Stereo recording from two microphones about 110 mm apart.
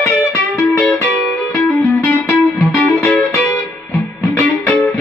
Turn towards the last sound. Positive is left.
turn(degrees=25)  # may be behind; listen again after turning